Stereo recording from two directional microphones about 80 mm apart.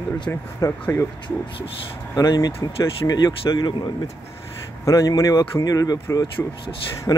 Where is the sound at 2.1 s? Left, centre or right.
Left.